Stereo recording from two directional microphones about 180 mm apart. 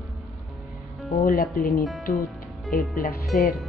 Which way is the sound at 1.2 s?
55° left (ahead or behind).